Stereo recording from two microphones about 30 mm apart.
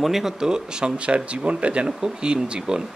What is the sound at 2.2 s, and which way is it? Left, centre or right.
Speech, right.